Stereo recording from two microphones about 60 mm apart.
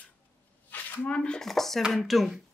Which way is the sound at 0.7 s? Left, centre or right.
Left.